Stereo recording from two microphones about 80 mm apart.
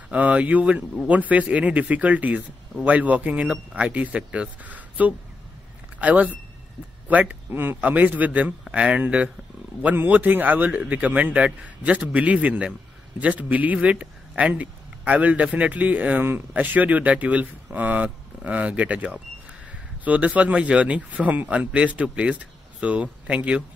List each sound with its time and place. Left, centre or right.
0.1 s a man's voice: centre